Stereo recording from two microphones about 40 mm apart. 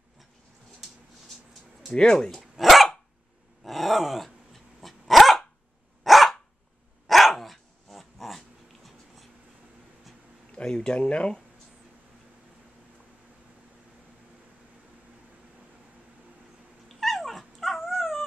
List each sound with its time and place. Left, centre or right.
1.9 s speech: left
2.5 s dog: centre
10.5 s a sound: centre
16.9 s dog: centre